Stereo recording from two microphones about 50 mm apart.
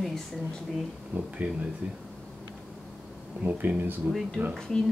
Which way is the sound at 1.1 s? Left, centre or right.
Right.